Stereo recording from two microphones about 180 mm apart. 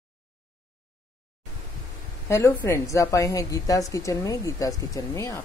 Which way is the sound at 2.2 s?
15° left (ahead or behind).